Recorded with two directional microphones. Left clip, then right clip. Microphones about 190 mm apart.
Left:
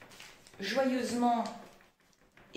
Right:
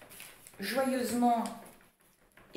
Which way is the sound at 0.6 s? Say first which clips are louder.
Even; 20° right (ahead or behind).